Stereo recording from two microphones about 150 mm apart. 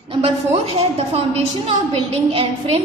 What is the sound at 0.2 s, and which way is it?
A woman's voice, 45° right (ahead or behind).